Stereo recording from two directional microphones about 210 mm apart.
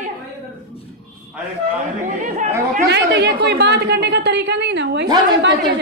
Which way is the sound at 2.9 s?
50° right (ahead or behind).